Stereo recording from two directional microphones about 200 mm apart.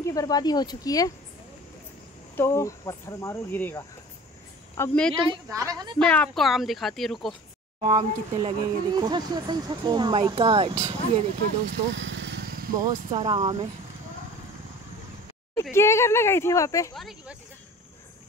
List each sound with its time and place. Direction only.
0.0 s speech: 20° left (ahead or behind)
2.3 s speech: 15° left (ahead or behind)
5.5 s a woman's voice: 15° right (ahead or behind)
5.9 s speech: 5° left (ahead or behind)
7.8 s speech: 25° right (ahead or behind)
12.0 s vehicle: 65° right (ahead or behind); by 12.8 s 45° right (ahead or behind)
13.1 s speech: 20° right (ahead or behind)
15.7 s speech: 15° left (ahead or behind)
16.9 s speech: centre (ahead or behind)